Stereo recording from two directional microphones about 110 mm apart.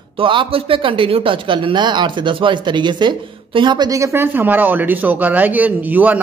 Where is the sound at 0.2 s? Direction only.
50° right (ahead or behind).